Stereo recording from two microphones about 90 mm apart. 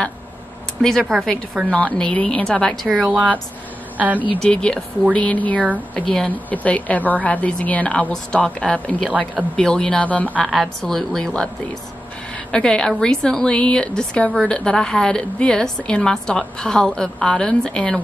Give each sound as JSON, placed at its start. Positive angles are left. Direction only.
{"t": 0.8, "sound": "a woman's voice", "side_deg": 5}
{"t": 2.9, "sound": "speech", "side_deg": -10}
{"t": 4.4, "sound": "a woman's voice", "side_deg": 10}
{"t": 10.4, "sound": "a woman's voice", "side_deg": 5}